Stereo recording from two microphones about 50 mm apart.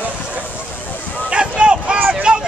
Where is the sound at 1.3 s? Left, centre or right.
Centre.